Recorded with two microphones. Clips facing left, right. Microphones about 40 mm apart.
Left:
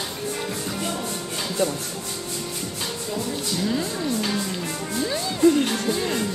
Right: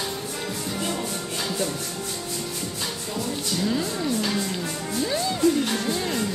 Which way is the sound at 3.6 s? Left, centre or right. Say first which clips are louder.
Even; centre.